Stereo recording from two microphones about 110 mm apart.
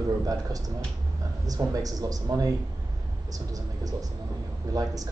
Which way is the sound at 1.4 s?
35° right (ahead or behind).